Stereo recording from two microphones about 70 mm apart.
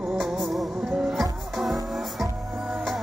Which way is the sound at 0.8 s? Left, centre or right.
Centre.